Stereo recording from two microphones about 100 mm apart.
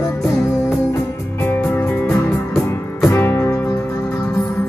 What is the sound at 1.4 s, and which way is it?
Music, 20° left (ahead or behind).